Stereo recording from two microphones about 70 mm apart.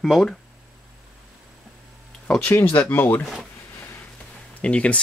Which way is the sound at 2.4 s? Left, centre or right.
Left.